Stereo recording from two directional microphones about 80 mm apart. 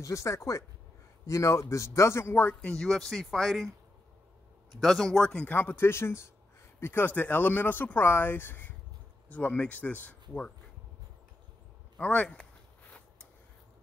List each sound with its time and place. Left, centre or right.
0.0 s a man's voice: left
2.6 s speech: centre
4.7 s speech: centre
5.5 s a man's voice: left
12.0 s speech: centre